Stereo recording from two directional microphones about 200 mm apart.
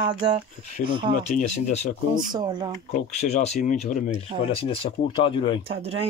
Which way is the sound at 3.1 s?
30° left (ahead or behind).